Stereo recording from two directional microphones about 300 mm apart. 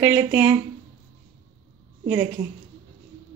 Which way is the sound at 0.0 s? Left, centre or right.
Centre.